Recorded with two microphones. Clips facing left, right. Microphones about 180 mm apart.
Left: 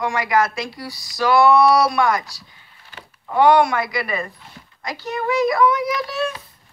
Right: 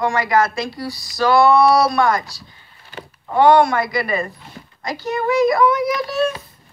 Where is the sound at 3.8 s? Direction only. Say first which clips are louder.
Right 3 dB; 35° right (ahead or behind).